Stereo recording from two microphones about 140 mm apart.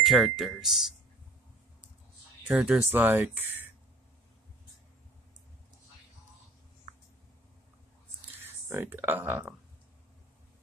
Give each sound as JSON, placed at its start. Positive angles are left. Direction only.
{"t": 0.0, "sound": "speech", "side_deg": 0}
{"t": 2.4, "sound": "speech", "side_deg": -10}
{"t": 8.4, "sound": "speech", "side_deg": -15}